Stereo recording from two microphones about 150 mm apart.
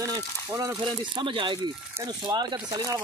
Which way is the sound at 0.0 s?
25° right (ahead or behind).